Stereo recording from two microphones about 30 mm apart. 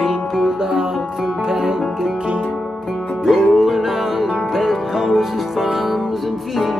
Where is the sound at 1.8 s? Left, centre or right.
Centre.